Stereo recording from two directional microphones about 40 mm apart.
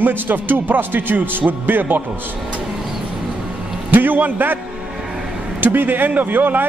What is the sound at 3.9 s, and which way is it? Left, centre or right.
Speech, right.